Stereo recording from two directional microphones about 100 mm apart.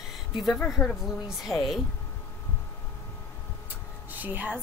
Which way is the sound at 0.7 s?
Centre (ahead or behind).